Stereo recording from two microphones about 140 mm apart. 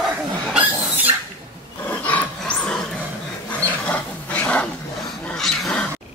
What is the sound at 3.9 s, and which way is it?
Wild animals, 10° left (ahead or behind).